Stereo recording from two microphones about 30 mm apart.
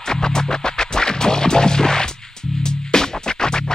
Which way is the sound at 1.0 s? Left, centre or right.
Left.